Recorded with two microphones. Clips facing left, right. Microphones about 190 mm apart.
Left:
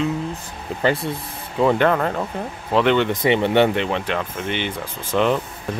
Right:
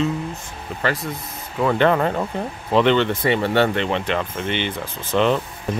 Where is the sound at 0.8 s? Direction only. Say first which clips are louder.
Left 4 dB; 30° left (ahead or behind).